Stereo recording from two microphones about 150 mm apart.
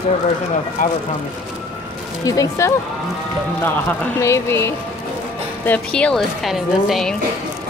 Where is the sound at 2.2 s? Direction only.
20° left (ahead or behind).